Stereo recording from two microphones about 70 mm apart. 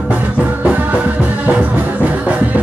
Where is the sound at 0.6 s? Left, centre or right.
Right.